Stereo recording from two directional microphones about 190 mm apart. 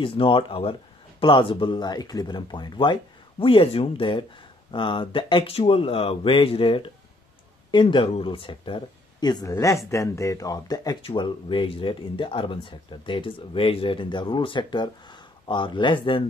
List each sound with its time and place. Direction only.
0.0 s speech: 25° left (ahead or behind)